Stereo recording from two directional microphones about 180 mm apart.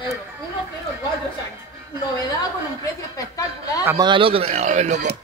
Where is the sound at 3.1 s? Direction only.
20° left (ahead or behind).